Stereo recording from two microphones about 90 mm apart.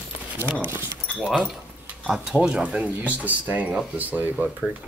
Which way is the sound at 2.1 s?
10° right (ahead or behind).